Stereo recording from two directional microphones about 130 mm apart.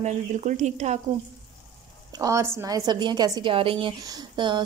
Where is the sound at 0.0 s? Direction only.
65° right (ahead or behind).